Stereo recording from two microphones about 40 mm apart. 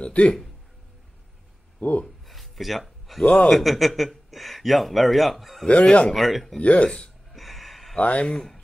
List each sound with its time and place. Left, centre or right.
0.0 s a sound: left
1.8 s speech: left
2.2 s a sound: centre
3.3 s speech: centre
5.7 s speech: left
6.1 s speech: centre
6.6 s speech: left
7.3 s gasp: centre
8.0 s speech: left